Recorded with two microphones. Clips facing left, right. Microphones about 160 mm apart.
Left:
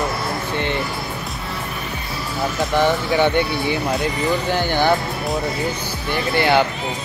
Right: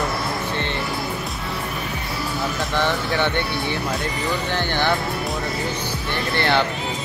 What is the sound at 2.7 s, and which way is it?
Speech, 15° left (ahead or behind).